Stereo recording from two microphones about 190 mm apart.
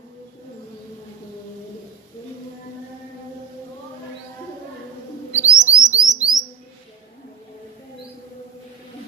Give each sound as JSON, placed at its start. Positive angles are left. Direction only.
{"t": 5.3, "sound": "bird", "side_deg": 15}
{"t": 5.8, "sound": "music", "side_deg": 15}